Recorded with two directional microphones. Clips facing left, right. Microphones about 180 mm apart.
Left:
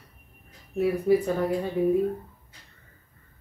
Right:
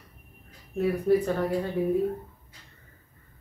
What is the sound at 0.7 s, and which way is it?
Speech, 5° left (ahead or behind).